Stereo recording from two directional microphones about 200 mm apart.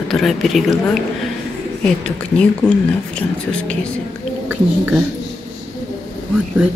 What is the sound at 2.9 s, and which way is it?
Speech, 5° left (ahead or behind).